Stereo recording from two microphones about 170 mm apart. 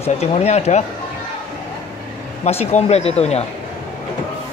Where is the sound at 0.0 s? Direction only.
40° left (ahead or behind).